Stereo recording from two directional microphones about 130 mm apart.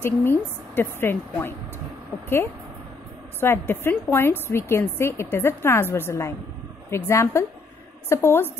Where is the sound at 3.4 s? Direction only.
15° left (ahead or behind).